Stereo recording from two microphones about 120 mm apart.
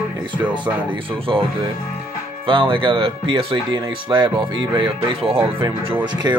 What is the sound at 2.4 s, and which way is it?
Speech, 45° right (ahead or behind).